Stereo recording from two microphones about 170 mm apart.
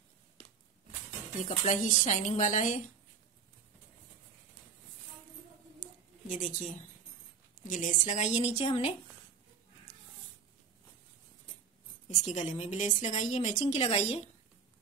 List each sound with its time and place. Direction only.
1.4 s a woman's voice: 45° left (ahead or behind)
5.8 s a sound: 50° left (ahead or behind)
7.6 s a woman's voice: 50° left (ahead or behind)
12.1 s a woman's voice: 45° left (ahead or behind)